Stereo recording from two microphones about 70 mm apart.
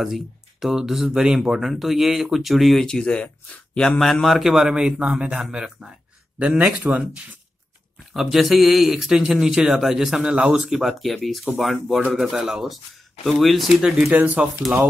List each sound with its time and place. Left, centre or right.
0.0 s a man's voice: centre
8.1 s a man's voice: centre
14.1 s speech: right
14.6 s speech: centre